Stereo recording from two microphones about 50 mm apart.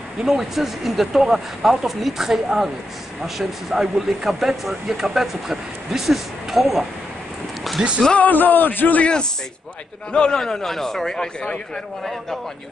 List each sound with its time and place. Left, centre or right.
0.2 s speech: centre
7.8 s speech: right
8.2 s a man's voice: left
10.1 s a man's voice: centre
12.0 s speech: centre